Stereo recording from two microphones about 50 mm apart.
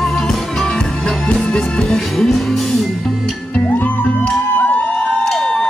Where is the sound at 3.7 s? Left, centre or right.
Left.